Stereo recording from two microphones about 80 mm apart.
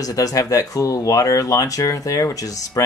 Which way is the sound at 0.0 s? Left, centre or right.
Left.